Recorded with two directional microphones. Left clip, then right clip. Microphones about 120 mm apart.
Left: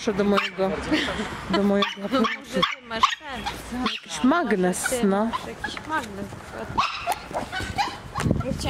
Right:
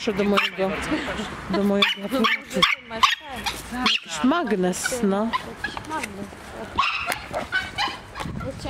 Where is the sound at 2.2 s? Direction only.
25° right (ahead or behind).